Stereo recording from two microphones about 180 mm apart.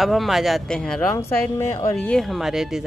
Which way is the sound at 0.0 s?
Centre (ahead or behind).